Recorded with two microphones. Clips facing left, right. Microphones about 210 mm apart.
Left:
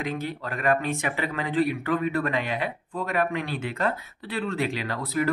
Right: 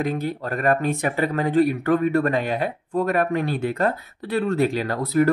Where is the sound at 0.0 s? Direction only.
40° right (ahead or behind).